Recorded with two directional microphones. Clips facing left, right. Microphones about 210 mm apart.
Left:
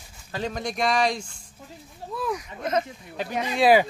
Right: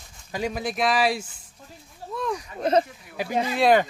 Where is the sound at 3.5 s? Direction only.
5° left (ahead or behind).